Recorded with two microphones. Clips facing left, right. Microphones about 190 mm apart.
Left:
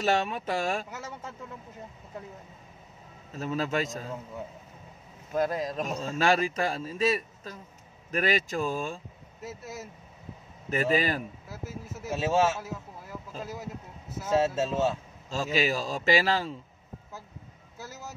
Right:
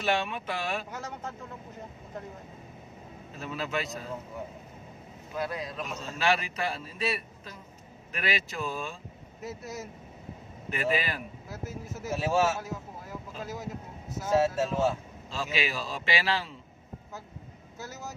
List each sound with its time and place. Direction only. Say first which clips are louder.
0.0 s speech: left 3 dB; 40° left (ahead or behind)
0.9 s speech: right 2 dB; 5° left (ahead or behind)
3.3 s a man's voice: left 4 dB; 40° left (ahead or behind)
5.3 s a man's voice: left 6 dB; 45° left (ahead or behind)
9.4 s speech: right 1 dB; centre (ahead or behind)
10.7 s speech: left 4 dB; 40° left (ahead or behind)
11.5 s speech: right 2 dB; centre (ahead or behind)
12.2 s speech: left 1 dB; 20° left (ahead or behind)
13.4 s speech: even; centre (ahead or behind)
14.4 s speech: even; 25° left (ahead or behind)
15.3 s a man's voice: left 5 dB; 40° left (ahead or behind)